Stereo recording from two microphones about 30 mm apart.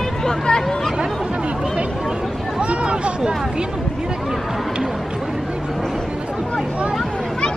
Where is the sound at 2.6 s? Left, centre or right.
Right.